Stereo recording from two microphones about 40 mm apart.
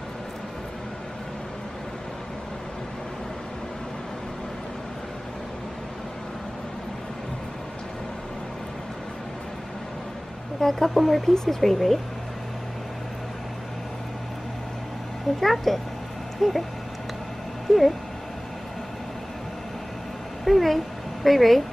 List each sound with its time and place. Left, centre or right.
10.6 s speech: centre
15.4 s speech: centre
16.3 s a sound: centre
17.7 s speech: centre
20.4 s a child's voice: centre